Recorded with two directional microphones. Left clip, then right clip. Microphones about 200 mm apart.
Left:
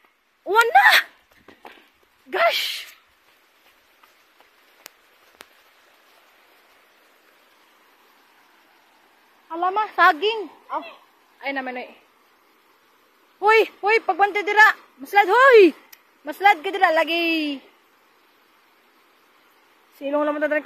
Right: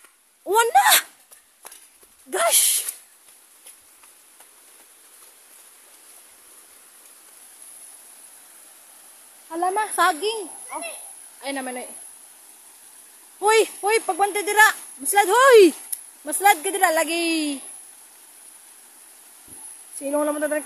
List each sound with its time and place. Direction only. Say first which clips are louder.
0.5 s speech: left 2 dB; 15° right (ahead or behind)
2.3 s speech: left 2 dB; 25° right (ahead or behind)
9.5 s speech: left 1 dB; 30° right (ahead or behind)
10.2 s speech: left 3 dB; 5° left (ahead or behind)
11.4 s speech: left 2 dB; 20° right (ahead or behind)
13.4 s speech: left 2 dB; 15° right (ahead or behind)
20.0 s speech: left 1 dB; 15° right (ahead or behind)